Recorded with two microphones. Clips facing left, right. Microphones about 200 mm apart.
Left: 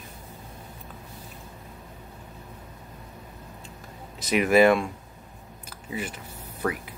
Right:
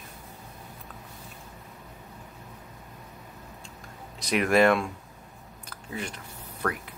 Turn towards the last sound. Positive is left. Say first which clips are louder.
# left 2 dB
turn(degrees=5)  # may be behind; listen again after turning